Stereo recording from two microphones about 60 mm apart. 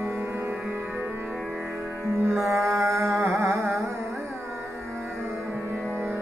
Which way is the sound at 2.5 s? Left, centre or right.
Right.